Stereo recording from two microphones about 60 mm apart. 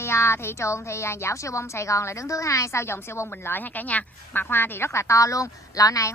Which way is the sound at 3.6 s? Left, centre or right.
Left.